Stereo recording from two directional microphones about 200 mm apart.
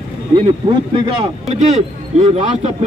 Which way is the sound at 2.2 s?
30° right (ahead or behind).